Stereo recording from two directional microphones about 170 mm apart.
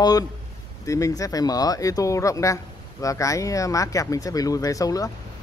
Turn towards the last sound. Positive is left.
turn(degrees=20)  # may be behind; listen again after turning